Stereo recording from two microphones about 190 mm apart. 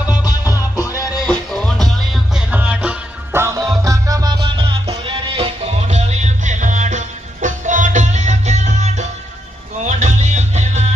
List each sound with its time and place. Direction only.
0.1 s music: 20° left (ahead or behind)
1.2 s music: 5° left (ahead or behind); by 10.8 s 40° right (ahead or behind)